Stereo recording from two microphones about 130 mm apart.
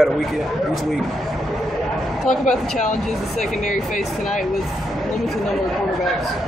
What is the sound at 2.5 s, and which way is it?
Speech, 65° left (ahead or behind).